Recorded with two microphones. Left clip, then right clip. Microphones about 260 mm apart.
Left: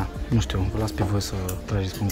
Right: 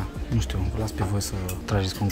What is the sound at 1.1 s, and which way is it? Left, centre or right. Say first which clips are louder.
Speech: left 2 dB; centre.